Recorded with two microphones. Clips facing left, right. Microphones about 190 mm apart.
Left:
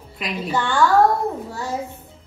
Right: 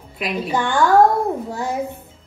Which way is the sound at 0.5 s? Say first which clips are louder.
Right 1 dB; 15° right (ahead or behind).